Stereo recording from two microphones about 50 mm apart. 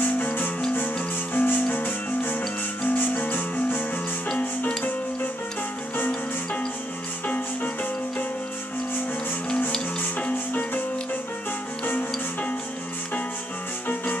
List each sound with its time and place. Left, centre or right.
0.0 s music: left
10.1 s music: left
11.8 s music: left